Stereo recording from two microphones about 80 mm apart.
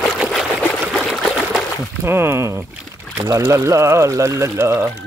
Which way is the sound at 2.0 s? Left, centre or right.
Right.